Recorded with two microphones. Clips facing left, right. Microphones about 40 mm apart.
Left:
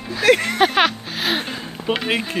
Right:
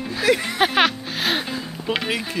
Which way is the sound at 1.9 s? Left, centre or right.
Left.